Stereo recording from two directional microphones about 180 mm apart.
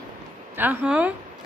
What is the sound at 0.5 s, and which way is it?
Speech, 10° right (ahead or behind).